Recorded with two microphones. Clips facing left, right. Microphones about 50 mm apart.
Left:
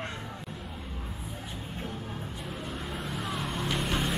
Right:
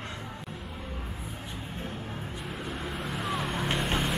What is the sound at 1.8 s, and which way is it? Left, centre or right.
Music, centre.